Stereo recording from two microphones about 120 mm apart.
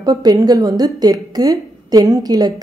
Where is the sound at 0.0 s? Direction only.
30° right (ahead or behind).